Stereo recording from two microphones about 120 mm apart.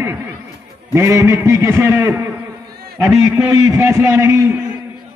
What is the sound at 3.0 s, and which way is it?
Speech, centre (ahead or behind).